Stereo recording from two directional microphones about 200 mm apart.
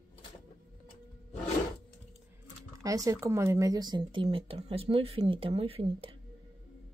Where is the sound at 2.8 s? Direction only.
15° right (ahead or behind).